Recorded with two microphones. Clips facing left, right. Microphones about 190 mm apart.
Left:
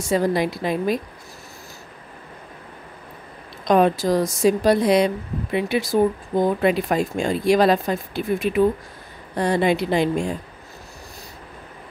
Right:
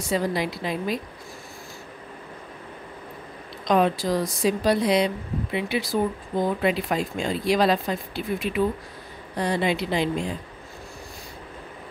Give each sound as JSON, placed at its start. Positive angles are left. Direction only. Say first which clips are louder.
{"t": 0.1, "sound": "speech", "louder": "left 5 dB", "side_deg": 50}
{"t": 3.6, "sound": "speech", "louder": "left 4 dB", "side_deg": 50}